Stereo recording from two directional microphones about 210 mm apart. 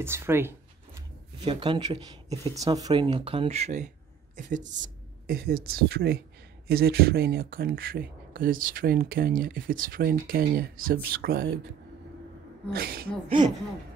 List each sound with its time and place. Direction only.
0.0 s speech: 10° right (ahead or behind)
1.4 s a woman's voice: 25° right (ahead or behind); by 11.5 s 45° right (ahead or behind)
12.7 s speech: 45° right (ahead or behind)